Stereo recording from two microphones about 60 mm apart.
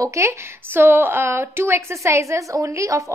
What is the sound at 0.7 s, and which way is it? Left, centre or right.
A woman's voice, right.